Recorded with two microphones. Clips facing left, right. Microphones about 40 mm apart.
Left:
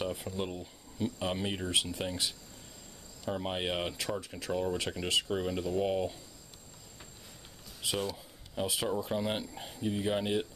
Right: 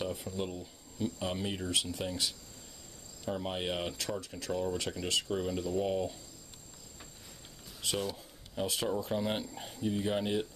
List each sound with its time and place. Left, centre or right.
0.0 s speech: centre
7.8 s speech: centre